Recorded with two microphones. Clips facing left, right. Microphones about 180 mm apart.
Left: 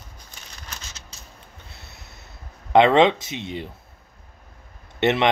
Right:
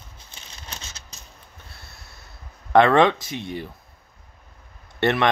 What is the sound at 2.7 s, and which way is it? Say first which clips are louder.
Speech: left 1 dB; 20° left (ahead or behind).